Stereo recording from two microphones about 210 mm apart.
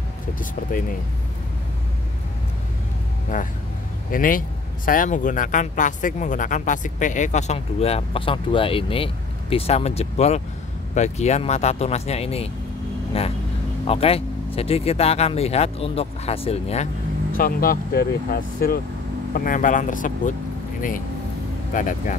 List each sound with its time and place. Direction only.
0.4 s speech: 40° left (ahead or behind)
3.3 s speech: 40° left (ahead or behind)
21.7 s speech: 40° left (ahead or behind)